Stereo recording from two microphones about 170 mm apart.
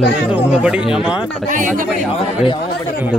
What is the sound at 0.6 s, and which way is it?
Speech, 5° right (ahead or behind).